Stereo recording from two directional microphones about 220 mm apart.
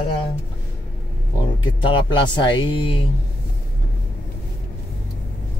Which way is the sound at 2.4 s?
20° left (ahead or behind).